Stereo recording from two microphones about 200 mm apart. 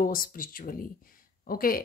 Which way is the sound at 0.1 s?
45° left (ahead or behind).